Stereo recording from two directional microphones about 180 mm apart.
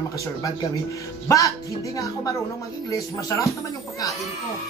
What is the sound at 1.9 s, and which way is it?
Speech, 20° left (ahead or behind).